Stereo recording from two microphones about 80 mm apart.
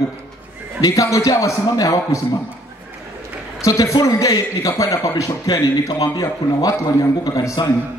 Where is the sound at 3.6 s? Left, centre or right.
Left.